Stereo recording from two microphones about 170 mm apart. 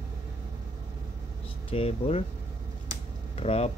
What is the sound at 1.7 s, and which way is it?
Speech, 35° left (ahead or behind).